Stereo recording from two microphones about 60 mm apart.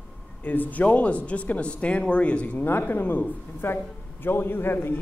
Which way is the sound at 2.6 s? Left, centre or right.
Left.